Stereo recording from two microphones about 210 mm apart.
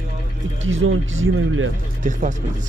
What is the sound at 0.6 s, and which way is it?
Speech, 65° right (ahead or behind).